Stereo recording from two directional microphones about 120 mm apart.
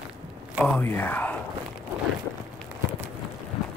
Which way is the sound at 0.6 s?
15° left (ahead or behind).